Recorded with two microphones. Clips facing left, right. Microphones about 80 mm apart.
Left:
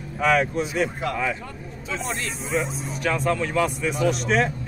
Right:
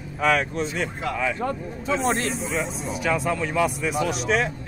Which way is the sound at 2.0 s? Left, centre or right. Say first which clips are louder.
Right 6 dB; right.